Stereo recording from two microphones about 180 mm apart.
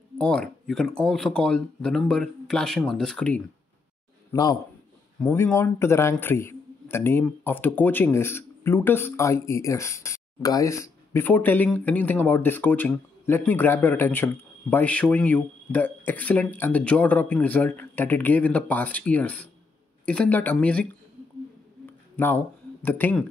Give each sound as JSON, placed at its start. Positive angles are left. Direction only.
{"t": 0.2, "sound": "speech", "side_deg": 5}
{"t": 4.3, "sound": "a man's voice", "side_deg": 20}
{"t": 21.8, "sound": "a sound", "side_deg": 10}